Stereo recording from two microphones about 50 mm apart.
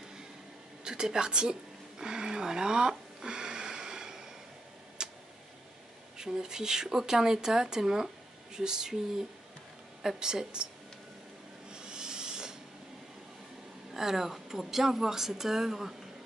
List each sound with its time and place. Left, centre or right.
0.8 s a sound: centre
5.0 s tick: centre
6.1 s speech: centre
10.2 s speech: centre
11.7 s a sound: centre
13.9 s speech: centre